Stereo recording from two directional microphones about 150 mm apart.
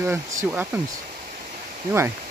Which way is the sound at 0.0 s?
20° right (ahead or behind).